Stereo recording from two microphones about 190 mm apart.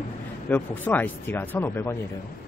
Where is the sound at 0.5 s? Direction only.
10° left (ahead or behind).